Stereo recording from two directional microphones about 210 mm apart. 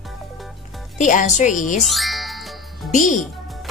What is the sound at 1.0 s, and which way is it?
Speech, 35° left (ahead or behind).